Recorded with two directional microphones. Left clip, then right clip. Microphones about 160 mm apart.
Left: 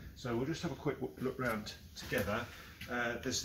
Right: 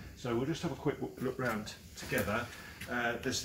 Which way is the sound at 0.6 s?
20° left (ahead or behind).